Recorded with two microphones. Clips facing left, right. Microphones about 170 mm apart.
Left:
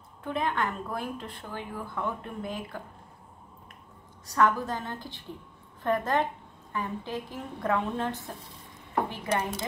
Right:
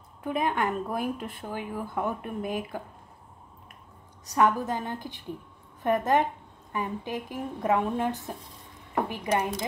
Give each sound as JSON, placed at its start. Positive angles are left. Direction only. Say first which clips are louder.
{"t": 0.2, "sound": "speech", "louder": "right 2 dB", "side_deg": -15}
{"t": 4.3, "sound": "a woman's voice", "louder": "right 1 dB", "side_deg": -20}